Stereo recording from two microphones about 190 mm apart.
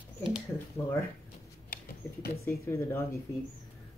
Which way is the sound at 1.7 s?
50° left (ahead or behind).